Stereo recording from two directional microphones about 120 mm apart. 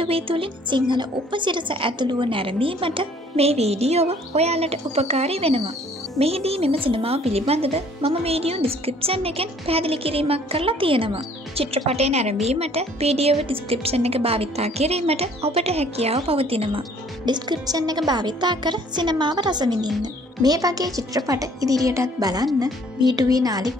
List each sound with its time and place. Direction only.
0.0 s a woman's voice: 50° right (ahead or behind)
17.3 s speech: 35° right (ahead or behind)